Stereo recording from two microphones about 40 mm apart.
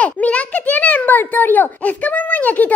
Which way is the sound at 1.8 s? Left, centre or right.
Left.